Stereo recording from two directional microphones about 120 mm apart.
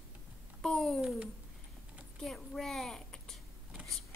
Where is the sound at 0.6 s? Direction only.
5° left (ahead or behind).